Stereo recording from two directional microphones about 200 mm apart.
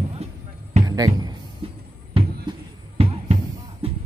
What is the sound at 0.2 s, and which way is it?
Basketball bounce, 30° right (ahead or behind).